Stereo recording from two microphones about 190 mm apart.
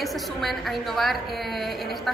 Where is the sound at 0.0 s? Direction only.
Centre (ahead or behind).